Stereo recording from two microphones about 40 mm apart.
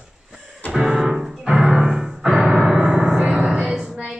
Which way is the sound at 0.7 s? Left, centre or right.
Centre.